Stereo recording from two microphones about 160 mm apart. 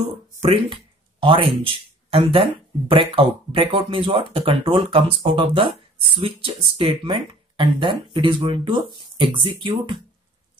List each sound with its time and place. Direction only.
0.4 s speech: 35° right (ahead or behind)